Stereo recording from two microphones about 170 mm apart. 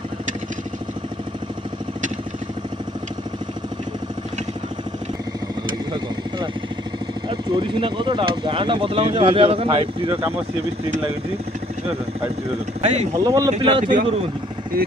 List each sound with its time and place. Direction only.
7.2 s speech: 30° right (ahead or behind)
12.8 s speech: 40° right (ahead or behind)
13.1 s speech: 20° right (ahead or behind)
13.5 s speech: 35° right (ahead or behind)